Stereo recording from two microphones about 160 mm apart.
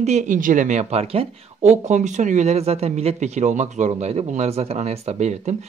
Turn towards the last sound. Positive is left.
turn(degrees=-45)  # may be behind; listen again after turning